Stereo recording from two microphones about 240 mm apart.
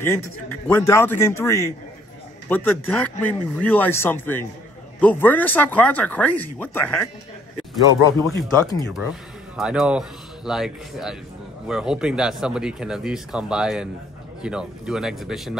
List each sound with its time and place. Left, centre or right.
0.7 s speech: centre
7.8 s speech: centre
9.6 s speech: centre